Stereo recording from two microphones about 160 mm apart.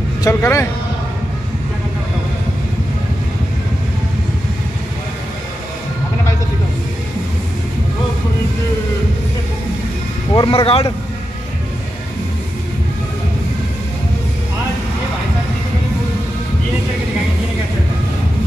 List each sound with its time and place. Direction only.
0.2 s speech: 15° left (ahead or behind)
10.3 s speech: 30° left (ahead or behind)